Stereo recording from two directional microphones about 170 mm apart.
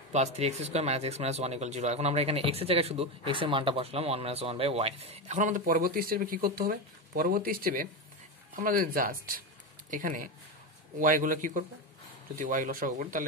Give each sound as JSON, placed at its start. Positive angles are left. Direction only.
{"t": 0.1, "sound": "a man's voice", "side_deg": -40}